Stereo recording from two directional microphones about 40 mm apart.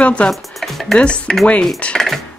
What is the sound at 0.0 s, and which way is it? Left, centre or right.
Speech, left.